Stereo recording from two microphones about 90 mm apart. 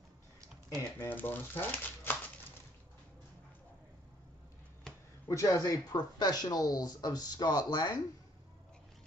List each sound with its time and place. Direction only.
0.9 s speech: 20° left (ahead or behind)
5.3 s speech: 35° left (ahead or behind)